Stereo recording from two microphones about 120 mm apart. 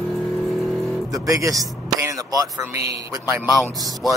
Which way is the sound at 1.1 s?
30° right (ahead or behind).